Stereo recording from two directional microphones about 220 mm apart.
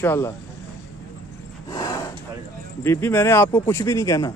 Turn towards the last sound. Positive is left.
turn(degrees=15)  # may be behind; listen again after turning